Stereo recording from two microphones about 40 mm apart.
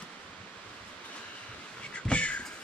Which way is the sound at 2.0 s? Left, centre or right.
Left.